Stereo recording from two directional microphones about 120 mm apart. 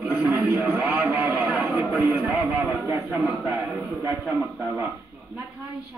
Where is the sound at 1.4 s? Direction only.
10° right (ahead or behind).